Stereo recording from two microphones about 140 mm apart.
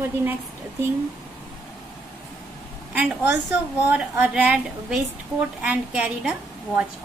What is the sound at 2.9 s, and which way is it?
A woman's voice, 10° right (ahead or behind).